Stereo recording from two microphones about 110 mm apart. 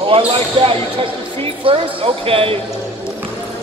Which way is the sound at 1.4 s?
60° right (ahead or behind).